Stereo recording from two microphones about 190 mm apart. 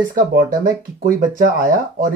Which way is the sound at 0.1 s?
50° right (ahead or behind).